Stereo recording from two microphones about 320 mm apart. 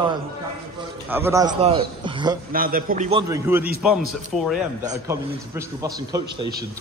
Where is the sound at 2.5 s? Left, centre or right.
Right.